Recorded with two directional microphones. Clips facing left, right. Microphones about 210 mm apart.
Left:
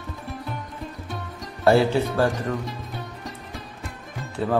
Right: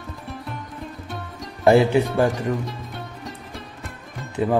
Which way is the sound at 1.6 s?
15° right (ahead or behind).